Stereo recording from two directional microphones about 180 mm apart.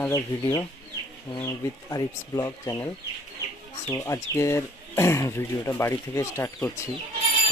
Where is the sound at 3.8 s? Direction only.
15° left (ahead or behind).